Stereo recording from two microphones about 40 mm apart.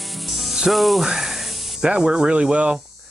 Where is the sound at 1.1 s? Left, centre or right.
Centre.